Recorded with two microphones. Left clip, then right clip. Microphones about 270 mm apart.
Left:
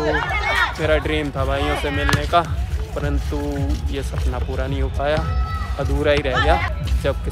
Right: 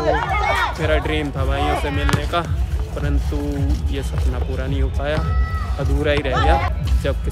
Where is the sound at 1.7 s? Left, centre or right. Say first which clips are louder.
Left 1 dB; right.